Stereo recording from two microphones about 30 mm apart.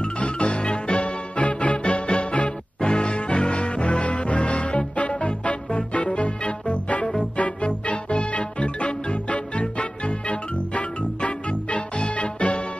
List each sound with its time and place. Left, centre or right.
0.0 s music: left